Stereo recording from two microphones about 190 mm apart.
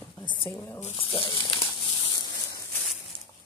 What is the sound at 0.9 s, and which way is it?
Speech, 25° left (ahead or behind).